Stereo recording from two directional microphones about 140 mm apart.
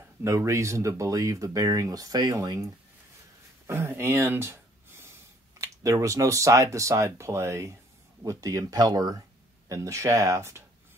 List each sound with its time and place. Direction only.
0.2 s speech: 20° right (ahead or behind)